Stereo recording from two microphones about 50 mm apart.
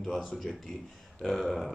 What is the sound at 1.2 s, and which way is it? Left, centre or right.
Speech, centre.